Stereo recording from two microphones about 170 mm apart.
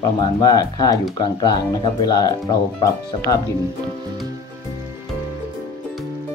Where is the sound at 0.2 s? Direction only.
25° left (ahead or behind).